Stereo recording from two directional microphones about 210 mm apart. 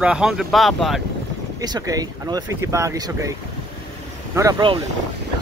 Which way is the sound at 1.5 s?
20° right (ahead or behind).